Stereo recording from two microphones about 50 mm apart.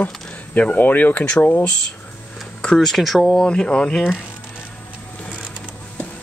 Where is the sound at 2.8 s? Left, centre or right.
Centre.